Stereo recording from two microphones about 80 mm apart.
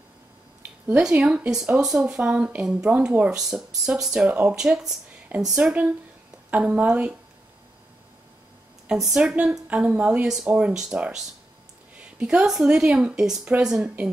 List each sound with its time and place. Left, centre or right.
0.6 s a sound: right
1.0 s speech: centre
4.6 s speech: centre
8.8 s speech: centre
10.2 s speech: centre